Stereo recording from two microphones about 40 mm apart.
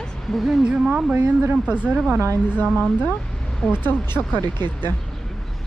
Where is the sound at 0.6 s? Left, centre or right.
Right.